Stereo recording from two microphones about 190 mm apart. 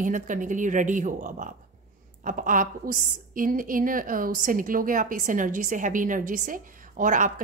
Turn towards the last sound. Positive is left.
turn(degrees=-45)  # may be behind; listen again after turning